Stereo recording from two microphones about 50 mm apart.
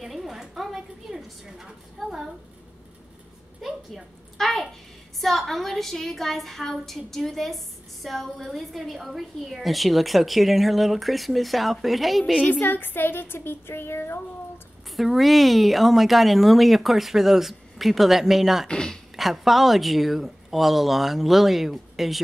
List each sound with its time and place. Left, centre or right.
0.0 s a sound: centre
2.0 s a woman's voice: centre
3.6 s a woman's voice: centre
12.4 s speech: left
15.0 s a woman's voice: centre
18.7 s speech: centre
19.1 s a woman's voice: centre